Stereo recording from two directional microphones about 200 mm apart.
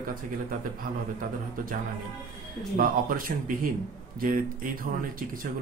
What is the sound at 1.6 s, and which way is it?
Speech, 45° right (ahead or behind).